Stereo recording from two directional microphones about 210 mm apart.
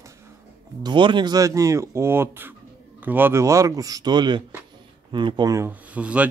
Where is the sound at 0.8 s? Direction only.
20° right (ahead or behind).